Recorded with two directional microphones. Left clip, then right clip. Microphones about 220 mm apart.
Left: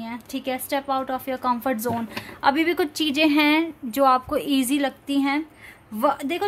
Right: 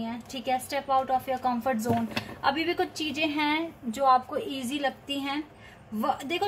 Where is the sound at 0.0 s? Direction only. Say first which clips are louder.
Left 3 dB; 50° left (ahead or behind).